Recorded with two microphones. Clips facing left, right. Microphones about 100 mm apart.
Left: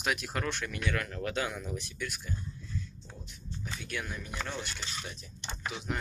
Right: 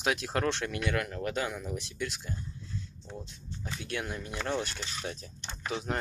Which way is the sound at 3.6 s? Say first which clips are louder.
Right 3 dB; 30° right (ahead or behind).